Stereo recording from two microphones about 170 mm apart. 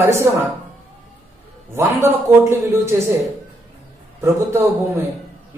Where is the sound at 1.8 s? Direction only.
15° right (ahead or behind).